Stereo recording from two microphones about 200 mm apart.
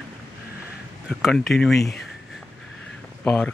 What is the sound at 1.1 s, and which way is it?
Speech, centre (ahead or behind).